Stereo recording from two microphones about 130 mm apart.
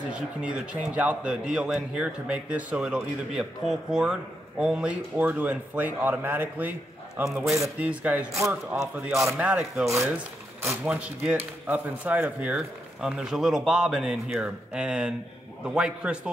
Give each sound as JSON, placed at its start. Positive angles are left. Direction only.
{"t": 0.1, "sound": "a man's voice", "side_deg": -10}